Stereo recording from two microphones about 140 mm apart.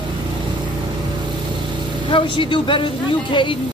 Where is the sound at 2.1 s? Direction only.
35° left (ahead or behind).